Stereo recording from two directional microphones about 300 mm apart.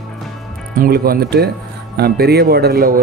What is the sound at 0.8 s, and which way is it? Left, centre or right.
Speech, right.